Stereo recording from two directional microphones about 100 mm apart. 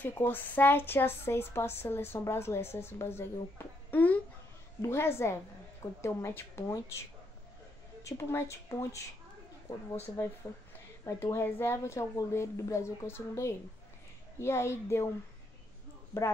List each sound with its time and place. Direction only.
0.0 s a woman's voice: 20° left (ahead or behind)
11.1 s a woman's voice: 30° left (ahead or behind)
16.1 s a woman's voice: 25° left (ahead or behind)